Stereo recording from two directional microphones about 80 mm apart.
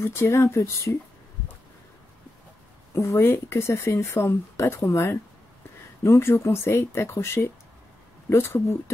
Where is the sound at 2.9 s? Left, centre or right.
Left.